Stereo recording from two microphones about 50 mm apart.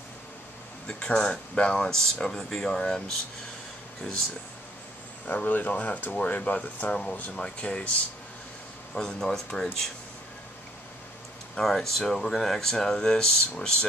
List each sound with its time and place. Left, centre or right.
0.8 s speech: left
5.2 s speech: left
8.9 s speech: centre
11.6 s speech: centre